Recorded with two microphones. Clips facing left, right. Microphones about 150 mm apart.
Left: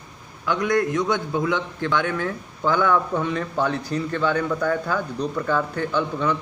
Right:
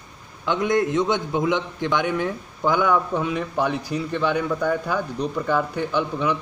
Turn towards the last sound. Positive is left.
turn(degrees=-10)  # may be behind; listen again after turning